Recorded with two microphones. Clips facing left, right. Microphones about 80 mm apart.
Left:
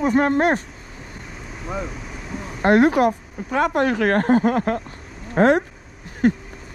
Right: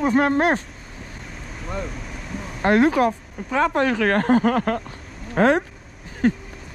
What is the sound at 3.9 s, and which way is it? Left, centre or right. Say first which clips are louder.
Speech: left 1 dB; left.